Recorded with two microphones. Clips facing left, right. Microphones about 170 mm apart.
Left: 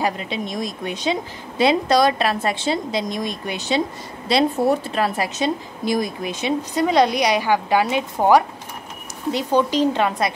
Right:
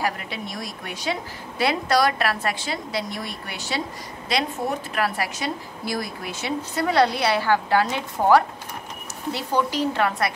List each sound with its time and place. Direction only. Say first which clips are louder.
0.0 s a woman's voice: left 4 dB; 20° left (ahead or behind)
4.3 s a woman's voice: left 8 dB; 30° left (ahead or behind)